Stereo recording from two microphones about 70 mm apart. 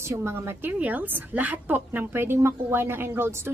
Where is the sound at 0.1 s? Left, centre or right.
Right.